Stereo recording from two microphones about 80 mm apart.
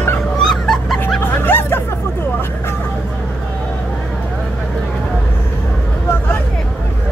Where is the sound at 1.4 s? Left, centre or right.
Left.